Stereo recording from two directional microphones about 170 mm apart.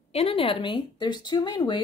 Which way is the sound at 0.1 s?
35° left (ahead or behind).